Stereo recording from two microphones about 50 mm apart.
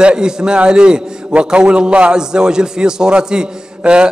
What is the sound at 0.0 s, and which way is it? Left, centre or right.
A man's voice, centre.